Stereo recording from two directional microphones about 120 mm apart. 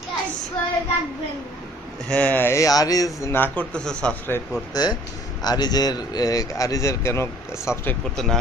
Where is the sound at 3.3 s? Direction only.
15° left (ahead or behind).